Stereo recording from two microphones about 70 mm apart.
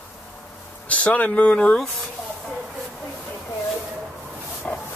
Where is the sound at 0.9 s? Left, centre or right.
Centre.